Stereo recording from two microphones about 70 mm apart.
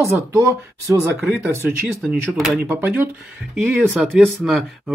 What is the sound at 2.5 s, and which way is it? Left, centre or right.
Speech, right.